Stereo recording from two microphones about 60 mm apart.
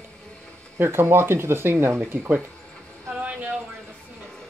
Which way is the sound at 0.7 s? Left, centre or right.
Right.